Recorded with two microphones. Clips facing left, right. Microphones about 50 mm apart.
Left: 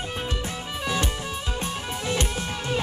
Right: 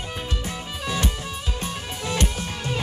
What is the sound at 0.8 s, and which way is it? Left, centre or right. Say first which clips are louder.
Music: even; left.